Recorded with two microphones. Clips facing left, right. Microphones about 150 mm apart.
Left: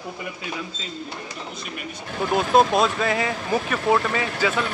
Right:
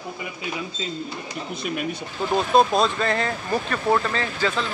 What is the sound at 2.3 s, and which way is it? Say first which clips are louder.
Speech: even; centre (ahead or behind).